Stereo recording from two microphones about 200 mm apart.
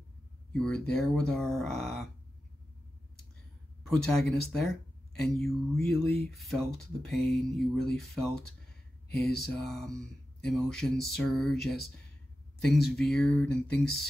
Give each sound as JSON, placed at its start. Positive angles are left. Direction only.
{"t": 0.5, "sound": "speech", "side_deg": 5}
{"t": 3.8, "sound": "speech", "side_deg": 0}